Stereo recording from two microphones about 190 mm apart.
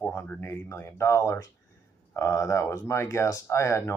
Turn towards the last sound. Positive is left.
turn(degrees=15)  # may be behind; listen again after turning